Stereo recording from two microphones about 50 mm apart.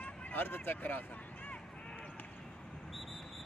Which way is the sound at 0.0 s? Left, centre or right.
Left.